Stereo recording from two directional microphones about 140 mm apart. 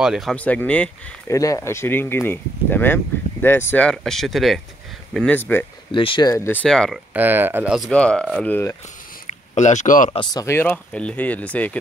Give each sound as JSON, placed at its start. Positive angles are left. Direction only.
{"t": 0.0, "sound": "speech", "side_deg": -5}
{"t": 0.4, "sound": "speech", "side_deg": 10}
{"t": 1.3, "sound": "speech", "side_deg": 20}
{"t": 5.9, "sound": "speech", "side_deg": 35}
{"t": 6.3, "sound": "speech", "side_deg": 15}
{"t": 7.2, "sound": "speech", "side_deg": -15}
{"t": 7.9, "sound": "speech", "side_deg": 5}
{"t": 9.6, "sound": "speech", "side_deg": 60}
{"t": 10.4, "sound": "speech", "side_deg": 15}